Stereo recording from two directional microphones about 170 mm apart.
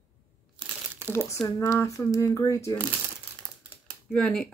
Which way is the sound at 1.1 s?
15° left (ahead or behind).